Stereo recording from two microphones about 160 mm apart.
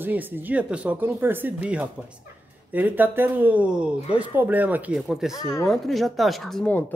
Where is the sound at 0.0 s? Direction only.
10° right (ahead or behind).